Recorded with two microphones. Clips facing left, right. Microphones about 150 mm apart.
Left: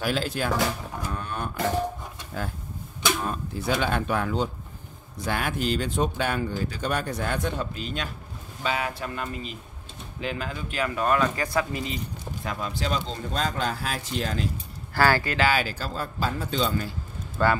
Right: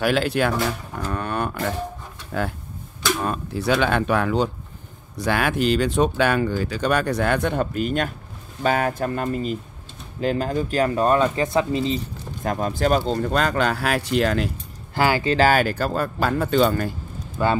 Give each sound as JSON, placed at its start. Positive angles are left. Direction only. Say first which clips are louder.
{"t": 0.0, "sound": "speech", "louder": "right 7 dB", "side_deg": -70}
{"t": 1.1, "sound": "a sound", "louder": "right 10 dB", "side_deg": -70}
{"t": 2.3, "sound": "speech", "louder": "right 7 dB", "side_deg": -70}
{"t": 12.4, "sound": "speech", "louder": "right 9 dB", "side_deg": -45}
{"t": 15.0, "sound": "speech", "louder": "right 2 dB", "side_deg": -15}
{"t": 15.3, "sound": "speech", "louder": "right 6 dB", "side_deg": -45}
{"t": 17.4, "sound": "speech", "louder": "right 2 dB", "side_deg": -10}